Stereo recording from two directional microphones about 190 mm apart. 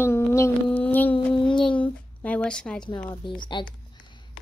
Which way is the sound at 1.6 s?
5° left (ahead or behind).